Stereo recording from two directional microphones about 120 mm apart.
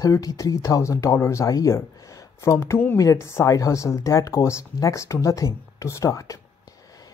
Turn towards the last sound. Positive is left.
turn(degrees=30)  # may be behind; listen again after turning